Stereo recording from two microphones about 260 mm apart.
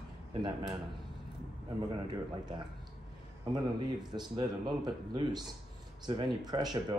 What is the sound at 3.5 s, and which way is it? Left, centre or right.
Speech, centre.